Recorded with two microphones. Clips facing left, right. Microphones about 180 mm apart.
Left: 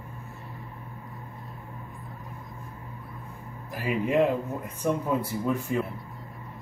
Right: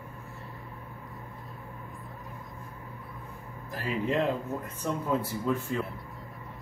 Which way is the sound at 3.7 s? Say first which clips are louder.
Left 4 dB; 15° left (ahead or behind).